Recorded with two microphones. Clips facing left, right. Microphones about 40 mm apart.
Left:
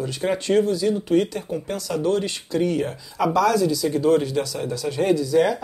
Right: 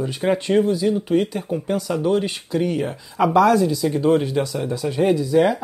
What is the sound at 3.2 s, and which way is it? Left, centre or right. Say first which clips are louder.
Speech: right 4 dB; right.